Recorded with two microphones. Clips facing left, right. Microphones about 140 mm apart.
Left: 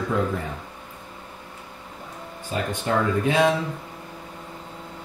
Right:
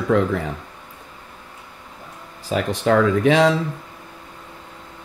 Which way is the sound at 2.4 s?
90° right.